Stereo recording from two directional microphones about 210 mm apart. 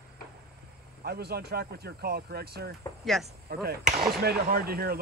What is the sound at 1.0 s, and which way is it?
Speech, 50° right (ahead or behind).